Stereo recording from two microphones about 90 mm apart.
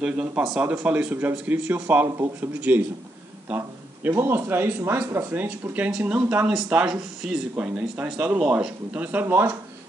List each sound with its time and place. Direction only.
0.0 s speech: 10° right (ahead or behind)
3.4 s a sound: 20° right (ahead or behind)
4.2 s speech: 25° right (ahead or behind)